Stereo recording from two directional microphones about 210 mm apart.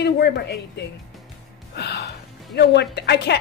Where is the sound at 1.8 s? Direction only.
50° left (ahead or behind).